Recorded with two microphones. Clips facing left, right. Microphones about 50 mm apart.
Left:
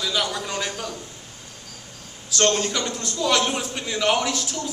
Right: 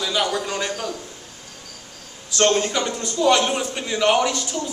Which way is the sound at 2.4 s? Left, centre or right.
Centre.